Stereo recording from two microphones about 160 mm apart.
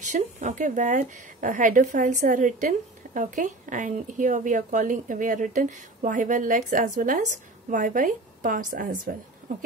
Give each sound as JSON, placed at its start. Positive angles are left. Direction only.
{"t": 0.0, "sound": "speech", "side_deg": -50}